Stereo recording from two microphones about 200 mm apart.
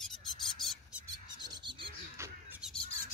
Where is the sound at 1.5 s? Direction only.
25° right (ahead or behind).